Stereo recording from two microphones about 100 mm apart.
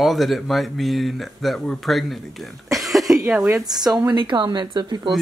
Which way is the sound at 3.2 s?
10° right (ahead or behind).